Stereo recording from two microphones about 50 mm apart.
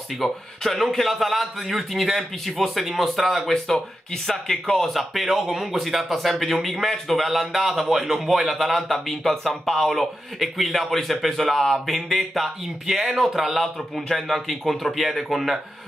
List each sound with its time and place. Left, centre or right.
0.2 s a man's voice: centre